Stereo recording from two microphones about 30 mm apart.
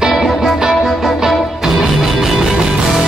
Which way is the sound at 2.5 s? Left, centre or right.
Centre.